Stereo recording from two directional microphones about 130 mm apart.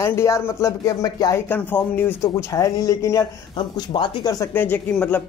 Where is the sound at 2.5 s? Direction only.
25° left (ahead or behind).